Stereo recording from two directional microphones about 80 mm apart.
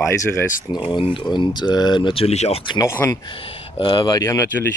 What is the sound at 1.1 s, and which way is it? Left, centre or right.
Speech, left.